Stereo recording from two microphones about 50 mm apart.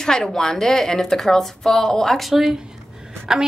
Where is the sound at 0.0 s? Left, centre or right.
Centre.